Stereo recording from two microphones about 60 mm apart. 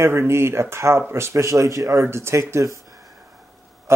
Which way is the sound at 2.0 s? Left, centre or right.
Right.